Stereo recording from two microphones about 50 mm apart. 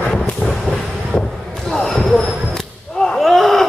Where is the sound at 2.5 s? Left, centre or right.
Centre.